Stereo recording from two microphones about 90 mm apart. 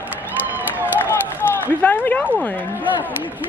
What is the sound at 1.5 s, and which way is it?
Speech, 20° left (ahead or behind).